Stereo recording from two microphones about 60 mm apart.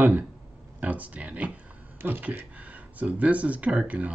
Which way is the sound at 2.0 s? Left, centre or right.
Right.